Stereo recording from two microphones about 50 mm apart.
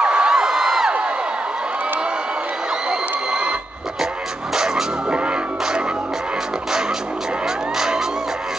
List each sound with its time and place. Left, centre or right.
0.0 s a sound: centre
2.9 s crowd: centre
4.6 s music: centre
7.4 s music: centre